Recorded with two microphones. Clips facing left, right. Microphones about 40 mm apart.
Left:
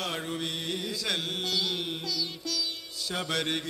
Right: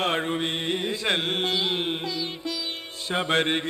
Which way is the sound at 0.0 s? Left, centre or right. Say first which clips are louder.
Right 8 dB; right.